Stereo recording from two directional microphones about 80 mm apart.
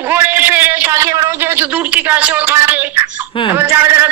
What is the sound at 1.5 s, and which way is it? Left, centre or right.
A man's voice, right.